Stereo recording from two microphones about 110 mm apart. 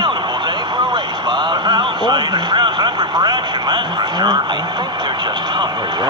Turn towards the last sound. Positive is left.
turn(degrees=-40)  # may be behind; listen again after turning